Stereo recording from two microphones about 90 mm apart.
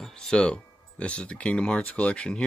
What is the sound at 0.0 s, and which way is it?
Speech, 5° left (ahead or behind).